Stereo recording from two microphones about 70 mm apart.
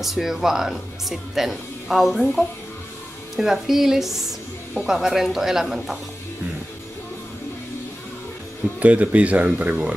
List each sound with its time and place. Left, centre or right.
0.0 s speech: centre
8.7 s speech: right